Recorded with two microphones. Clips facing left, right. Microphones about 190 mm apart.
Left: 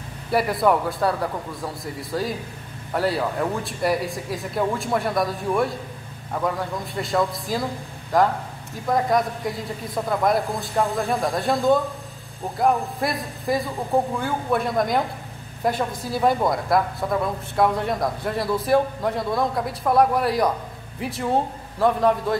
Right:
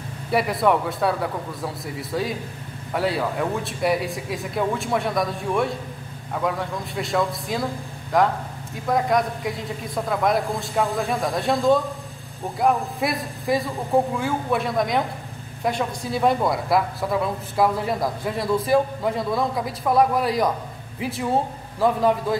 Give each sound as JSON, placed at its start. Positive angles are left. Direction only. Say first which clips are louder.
{"t": 0.3, "sound": "speech", "louder": "even", "side_deg": 0}